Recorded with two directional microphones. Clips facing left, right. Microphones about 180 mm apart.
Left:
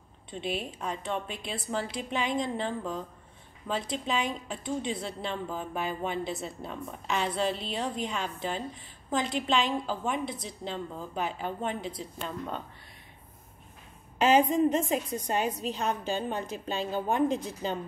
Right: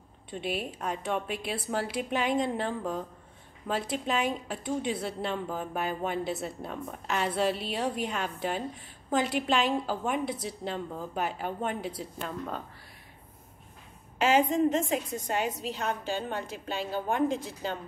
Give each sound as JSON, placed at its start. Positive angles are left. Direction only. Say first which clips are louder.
{"t": 0.3, "sound": "a woman's voice", "louder": "right 1 dB", "side_deg": -5}
{"t": 14.5, "sound": "a woman's voice", "louder": "left 1 dB", "side_deg": -20}
{"t": 15.6, "sound": "a woman's voice", "louder": "left 2 dB", "side_deg": 15}